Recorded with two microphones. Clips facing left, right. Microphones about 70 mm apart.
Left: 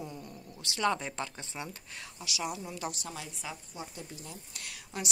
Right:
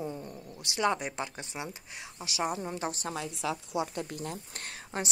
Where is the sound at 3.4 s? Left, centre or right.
Right.